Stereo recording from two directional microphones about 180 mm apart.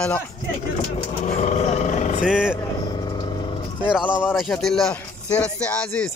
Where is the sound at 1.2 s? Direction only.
40° left (ahead or behind).